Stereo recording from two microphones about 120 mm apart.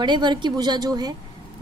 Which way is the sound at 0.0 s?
40° right (ahead or behind).